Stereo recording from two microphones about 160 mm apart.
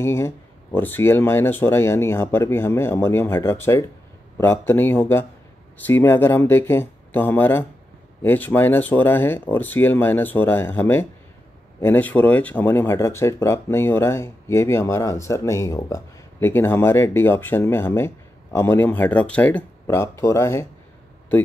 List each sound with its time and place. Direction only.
0.0 s speech: 15° left (ahead or behind)